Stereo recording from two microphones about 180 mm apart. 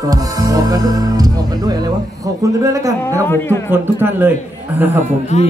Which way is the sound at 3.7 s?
10° right (ahead or behind).